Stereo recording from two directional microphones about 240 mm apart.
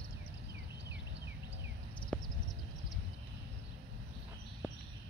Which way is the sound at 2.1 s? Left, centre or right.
Centre.